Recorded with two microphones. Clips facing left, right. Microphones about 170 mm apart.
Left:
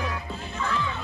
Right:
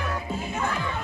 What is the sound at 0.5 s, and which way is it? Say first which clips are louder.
Speech: left 1 dB; 60° right (ahead or behind).